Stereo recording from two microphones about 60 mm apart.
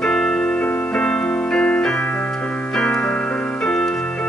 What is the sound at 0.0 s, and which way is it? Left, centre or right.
Keyboard, centre.